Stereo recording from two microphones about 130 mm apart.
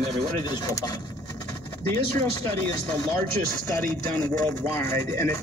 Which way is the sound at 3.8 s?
15° left (ahead or behind).